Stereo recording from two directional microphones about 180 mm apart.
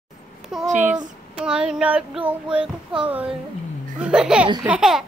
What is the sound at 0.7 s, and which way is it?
Speech, 45° right (ahead or behind).